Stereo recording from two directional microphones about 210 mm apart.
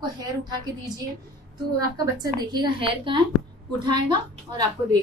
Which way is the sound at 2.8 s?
25° right (ahead or behind).